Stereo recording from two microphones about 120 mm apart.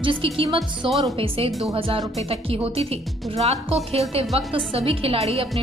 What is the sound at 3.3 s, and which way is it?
A woman's voice, 60° right (ahead or behind).